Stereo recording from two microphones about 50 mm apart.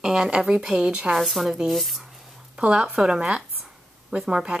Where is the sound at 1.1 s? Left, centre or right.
Centre.